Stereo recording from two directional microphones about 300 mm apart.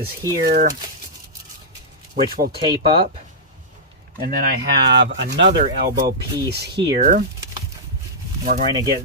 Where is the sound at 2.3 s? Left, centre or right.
Right.